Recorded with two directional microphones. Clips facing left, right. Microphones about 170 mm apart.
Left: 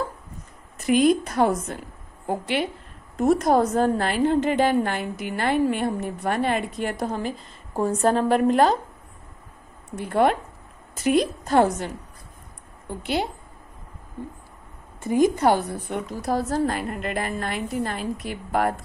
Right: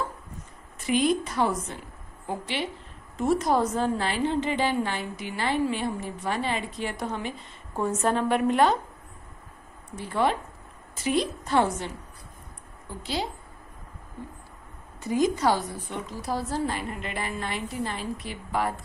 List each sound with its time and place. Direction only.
0.8 s a woman's voice: 45° left (ahead or behind)
7.0 s a woman's voice: 35° left (ahead or behind)
9.9 s a woman's voice: 55° left (ahead or behind)
12.8 s a woman's voice: 60° left (ahead or behind)
15.0 s a woman's voice: 55° left (ahead or behind)